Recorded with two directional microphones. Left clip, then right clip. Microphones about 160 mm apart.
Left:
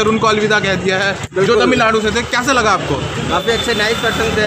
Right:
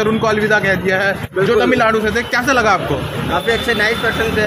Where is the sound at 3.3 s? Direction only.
15° left (ahead or behind).